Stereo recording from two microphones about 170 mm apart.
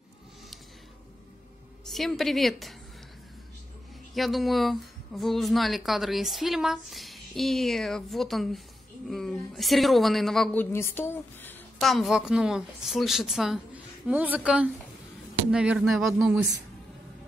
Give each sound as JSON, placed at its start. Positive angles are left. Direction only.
{"t": 1.9, "sound": "speech", "side_deg": 0}
{"t": 4.1, "sound": "speech", "side_deg": 0}
{"t": 11.8, "sound": "speech", "side_deg": 0}